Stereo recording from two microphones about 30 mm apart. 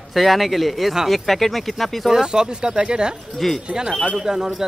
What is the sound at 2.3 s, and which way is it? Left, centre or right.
Speech, right.